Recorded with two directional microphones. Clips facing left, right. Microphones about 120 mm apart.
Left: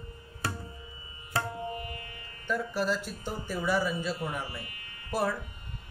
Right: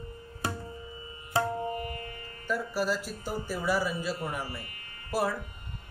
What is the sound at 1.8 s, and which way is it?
Music, 40° right (ahead or behind).